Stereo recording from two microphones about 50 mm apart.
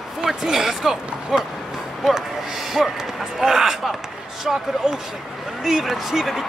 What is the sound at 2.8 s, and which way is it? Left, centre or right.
Speech, centre.